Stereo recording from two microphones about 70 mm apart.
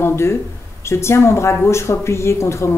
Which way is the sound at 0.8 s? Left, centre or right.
Left.